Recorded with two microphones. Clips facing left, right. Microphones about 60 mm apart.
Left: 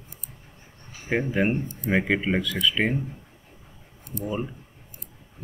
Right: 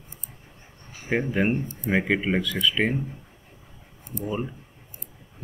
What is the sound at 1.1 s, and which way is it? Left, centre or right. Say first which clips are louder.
Speech: even; centre.